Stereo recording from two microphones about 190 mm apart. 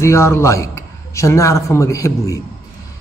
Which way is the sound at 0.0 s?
15° left (ahead or behind).